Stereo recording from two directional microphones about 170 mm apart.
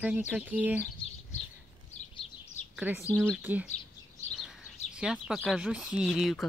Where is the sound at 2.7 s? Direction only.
10° right (ahead or behind).